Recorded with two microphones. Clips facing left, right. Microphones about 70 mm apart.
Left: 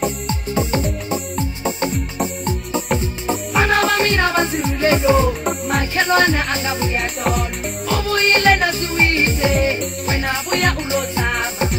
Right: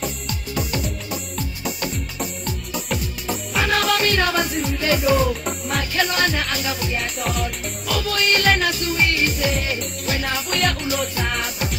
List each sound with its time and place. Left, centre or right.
0.0 s music: left
7.0 s music: left
7.9 s music: left